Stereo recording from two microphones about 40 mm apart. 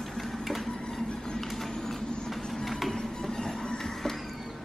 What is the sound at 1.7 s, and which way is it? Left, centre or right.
Vehicle, centre.